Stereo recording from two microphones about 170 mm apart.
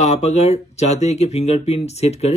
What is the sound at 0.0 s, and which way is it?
Speech, 40° left (ahead or behind).